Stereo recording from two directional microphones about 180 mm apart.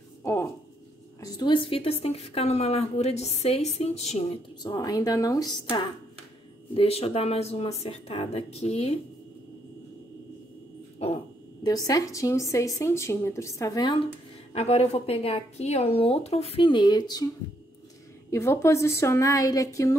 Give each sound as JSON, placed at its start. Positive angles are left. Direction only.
{"t": 0.2, "sound": "a sound", "side_deg": 10}
{"t": 1.2, "sound": "a woman's voice", "side_deg": 25}
{"t": 4.6, "sound": "speech", "side_deg": 20}
{"t": 6.7, "sound": "a woman's voice", "side_deg": 35}
{"t": 11.0, "sound": "owl", "side_deg": 35}
{"t": 11.6, "sound": "speech", "side_deg": 20}
{"t": 14.5, "sound": "a woman's voice", "side_deg": 35}
{"t": 18.3, "sound": "speech", "side_deg": 15}